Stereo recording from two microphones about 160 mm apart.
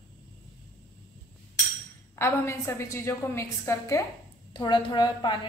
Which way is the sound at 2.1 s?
15° left (ahead or behind).